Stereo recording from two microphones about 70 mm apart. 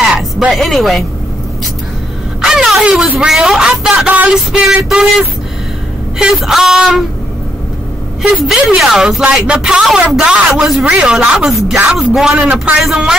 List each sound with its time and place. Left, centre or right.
0.5 s speech: centre
2.4 s a sound: centre
3.2 s speech: centre
4.1 s a sound: right
4.5 s speech: centre
8.2 s speech: centre
10.5 s speech: centre
10.9 s speech: centre